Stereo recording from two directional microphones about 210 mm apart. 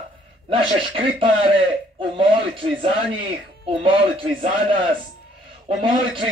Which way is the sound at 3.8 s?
25° right (ahead or behind).